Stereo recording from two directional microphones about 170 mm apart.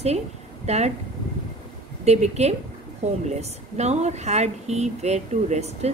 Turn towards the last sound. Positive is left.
turn(degrees=-40)  # may be behind; listen again after turning